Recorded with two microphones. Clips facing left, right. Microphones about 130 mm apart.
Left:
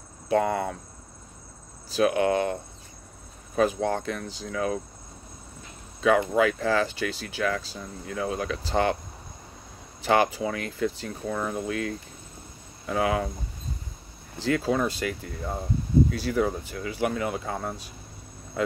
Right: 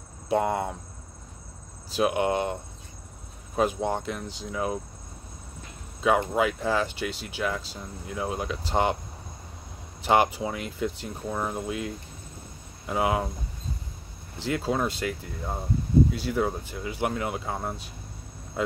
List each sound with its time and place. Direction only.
0.3 s speech: 15° right (ahead or behind)
2.0 s speech: 20° right (ahead or behind)
3.5 s speech: 20° right (ahead or behind)
5.9 s speech: 20° right (ahead or behind)
10.0 s speech: 15° right (ahead or behind)
14.4 s speech: 20° right (ahead or behind)